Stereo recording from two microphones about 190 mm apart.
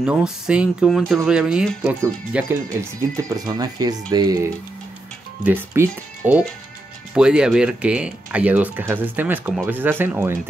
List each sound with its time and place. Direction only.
0.0 s speech: 5° right (ahead or behind)
3.3 s speech: 20° right (ahead or behind)